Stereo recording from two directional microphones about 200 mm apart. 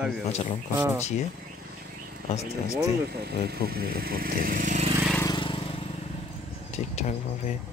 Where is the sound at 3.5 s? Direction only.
50° right (ahead or behind).